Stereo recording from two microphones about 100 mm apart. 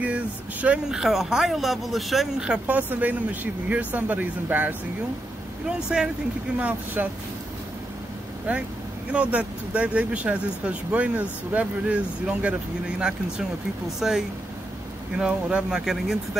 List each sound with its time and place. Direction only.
0.0 s speech: 15° right (ahead or behind)
5.7 s speech: 5° right (ahead or behind)
8.5 s speech: 15° right (ahead or behind)
13.9 s speech: 5° right (ahead or behind)